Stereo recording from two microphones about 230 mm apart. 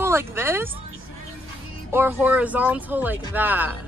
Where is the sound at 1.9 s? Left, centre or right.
Centre.